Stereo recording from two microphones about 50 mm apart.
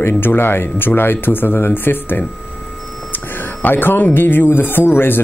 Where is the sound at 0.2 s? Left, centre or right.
Left.